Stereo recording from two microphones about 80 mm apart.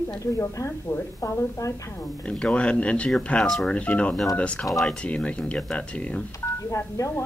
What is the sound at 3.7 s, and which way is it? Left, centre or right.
Speech, centre.